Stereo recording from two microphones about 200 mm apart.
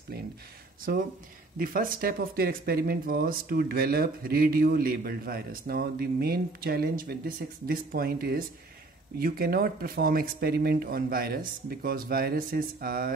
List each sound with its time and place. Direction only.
0.9 s speech: 50° right (ahead or behind)